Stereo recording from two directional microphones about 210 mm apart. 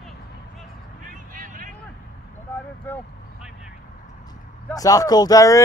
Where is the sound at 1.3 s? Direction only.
40° right (ahead or behind).